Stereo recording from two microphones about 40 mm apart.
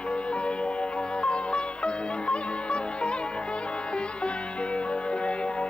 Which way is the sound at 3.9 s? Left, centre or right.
Left.